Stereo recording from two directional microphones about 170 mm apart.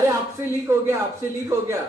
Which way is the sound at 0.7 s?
15° right (ahead or behind).